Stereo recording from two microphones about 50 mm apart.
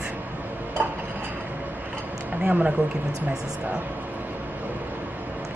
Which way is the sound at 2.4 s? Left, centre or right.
Right.